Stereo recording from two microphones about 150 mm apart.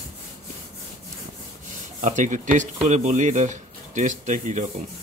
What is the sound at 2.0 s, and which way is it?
Speech, 55° right (ahead or behind).